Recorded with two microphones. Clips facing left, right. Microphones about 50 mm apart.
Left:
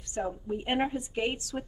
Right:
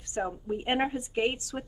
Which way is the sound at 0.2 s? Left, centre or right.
Centre.